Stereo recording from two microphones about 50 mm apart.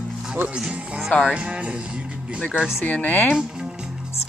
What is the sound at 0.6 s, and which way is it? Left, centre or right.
Speech, centre.